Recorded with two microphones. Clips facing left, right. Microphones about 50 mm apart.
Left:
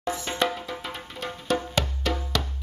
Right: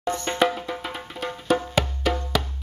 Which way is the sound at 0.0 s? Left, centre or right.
Centre.